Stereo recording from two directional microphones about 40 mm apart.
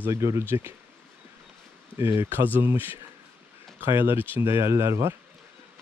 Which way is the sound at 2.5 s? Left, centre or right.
Right.